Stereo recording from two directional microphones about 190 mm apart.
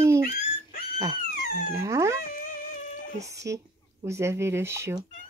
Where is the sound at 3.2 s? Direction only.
15° right (ahead or behind).